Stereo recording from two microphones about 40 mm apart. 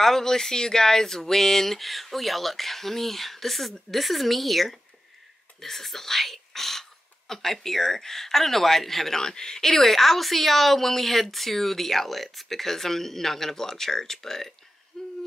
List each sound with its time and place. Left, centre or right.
0.0 s a woman's voice: centre
14.9 s hoot: centre